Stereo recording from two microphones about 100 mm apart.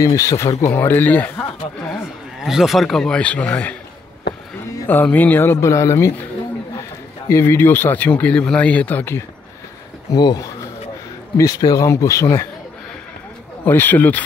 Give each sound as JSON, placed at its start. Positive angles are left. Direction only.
{"t": 0.0, "sound": "speech", "side_deg": 35}
{"t": 0.7, "sound": "speech", "side_deg": 20}
{"t": 2.4, "sound": "speech", "side_deg": -5}
{"t": 4.8, "sound": "speech", "side_deg": 15}
{"t": 10.1, "sound": "speech", "side_deg": 40}
{"t": 13.7, "sound": "speech", "side_deg": 20}